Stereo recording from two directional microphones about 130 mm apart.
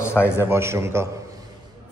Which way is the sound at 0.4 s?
20° right (ahead or behind).